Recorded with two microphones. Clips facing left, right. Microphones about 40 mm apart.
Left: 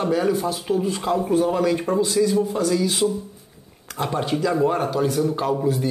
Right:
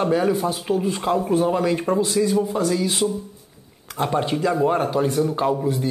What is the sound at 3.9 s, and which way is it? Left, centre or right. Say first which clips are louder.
Speech: right 2 dB; centre.